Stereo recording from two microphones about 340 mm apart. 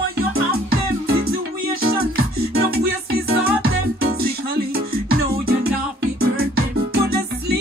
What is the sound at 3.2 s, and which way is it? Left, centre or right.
Music, right.